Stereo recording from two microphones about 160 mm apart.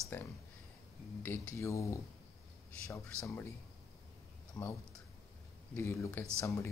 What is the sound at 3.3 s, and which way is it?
Speech, 15° left (ahead or behind).